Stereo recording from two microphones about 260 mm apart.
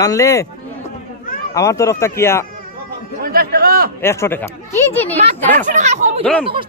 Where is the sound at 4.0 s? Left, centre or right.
Centre.